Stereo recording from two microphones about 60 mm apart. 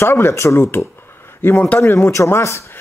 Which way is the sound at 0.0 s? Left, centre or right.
Left.